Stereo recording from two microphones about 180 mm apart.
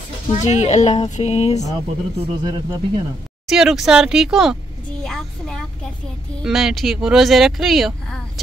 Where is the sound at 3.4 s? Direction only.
Centre (ahead or behind).